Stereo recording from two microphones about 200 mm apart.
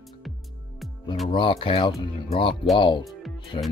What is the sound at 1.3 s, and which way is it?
Speech, 25° left (ahead or behind).